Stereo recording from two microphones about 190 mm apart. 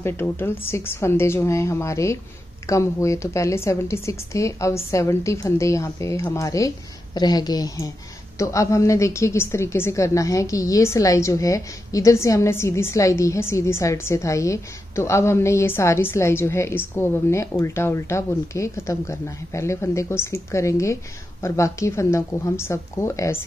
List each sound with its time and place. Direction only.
0.0 s a woman's voice: 10° left (ahead or behind)